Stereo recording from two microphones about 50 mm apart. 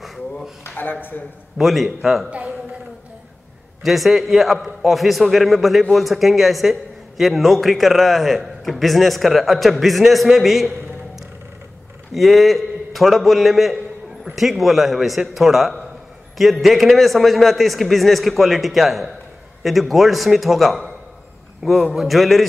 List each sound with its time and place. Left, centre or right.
0.0 s a sound: centre
0.7 s speech: left
1.6 s a man's voice: centre
3.8 s a man's voice: centre
12.1 s a man's voice: centre